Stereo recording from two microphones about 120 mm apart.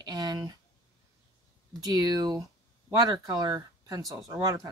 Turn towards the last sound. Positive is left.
turn(degrees=-30)  # may be behind; listen again after turning